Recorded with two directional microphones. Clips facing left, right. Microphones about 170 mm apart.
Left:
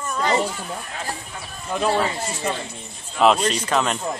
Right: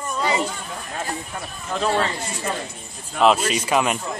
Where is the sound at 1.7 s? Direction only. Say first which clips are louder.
Left 1 dB; 10° left (ahead or behind).